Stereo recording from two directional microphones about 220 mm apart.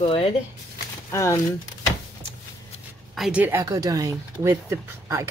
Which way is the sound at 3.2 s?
5° right (ahead or behind).